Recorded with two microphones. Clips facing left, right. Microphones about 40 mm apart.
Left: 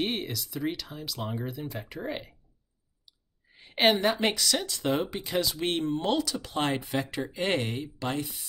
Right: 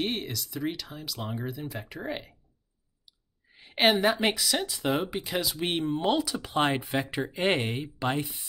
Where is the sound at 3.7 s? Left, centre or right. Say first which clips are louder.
Right 1 dB; centre.